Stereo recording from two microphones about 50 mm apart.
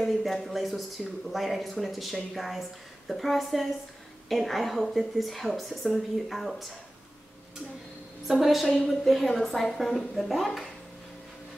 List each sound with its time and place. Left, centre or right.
0.0 s a woman's voice: centre
8.3 s a woman's voice: centre